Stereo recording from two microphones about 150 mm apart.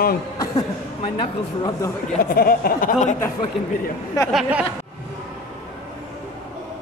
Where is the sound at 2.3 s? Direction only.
80° left; by 3.1 s 60° left (ahead or behind).